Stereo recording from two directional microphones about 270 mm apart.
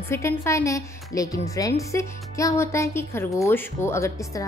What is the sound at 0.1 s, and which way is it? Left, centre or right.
A woman's voice, centre.